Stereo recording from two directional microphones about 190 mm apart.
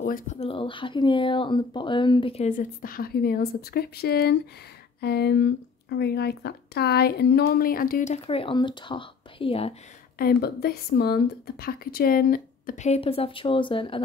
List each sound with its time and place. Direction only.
0.0 s speech: 45° left (ahead or behind)
0.4 s speech: 30° left (ahead or behind)
2.8 s speech: 50° left (ahead or behind); by 9.8 s 30° left (ahead or behind)
10.1 s speech: 55° left (ahead or behind); by 14.0 s 25° left (ahead or behind)